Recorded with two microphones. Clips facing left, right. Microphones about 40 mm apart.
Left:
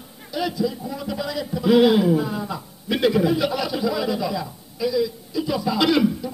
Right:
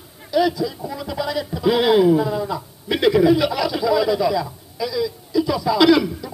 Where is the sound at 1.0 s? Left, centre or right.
Right.